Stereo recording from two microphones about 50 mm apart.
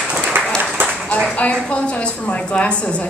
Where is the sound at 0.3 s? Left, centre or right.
Right.